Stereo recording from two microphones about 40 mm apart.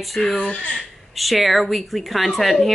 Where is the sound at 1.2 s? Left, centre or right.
Centre.